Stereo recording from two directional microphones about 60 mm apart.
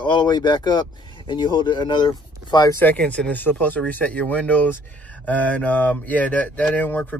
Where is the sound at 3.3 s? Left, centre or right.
Left.